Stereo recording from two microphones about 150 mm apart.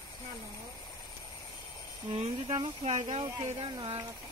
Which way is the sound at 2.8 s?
50° right (ahead or behind).